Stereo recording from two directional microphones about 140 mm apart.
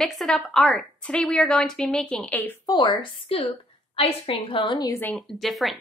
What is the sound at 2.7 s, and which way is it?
A woman's voice, 30° left (ahead or behind).